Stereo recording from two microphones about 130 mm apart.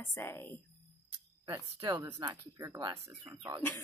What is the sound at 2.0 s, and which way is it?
Speech, 25° right (ahead or behind).